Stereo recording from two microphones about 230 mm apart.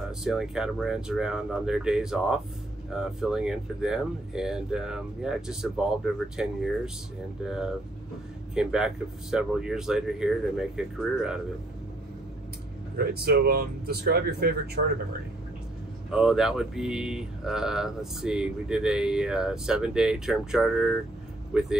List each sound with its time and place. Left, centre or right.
0.2 s speech: centre
12.9 s speech: right
16.1 s speech: centre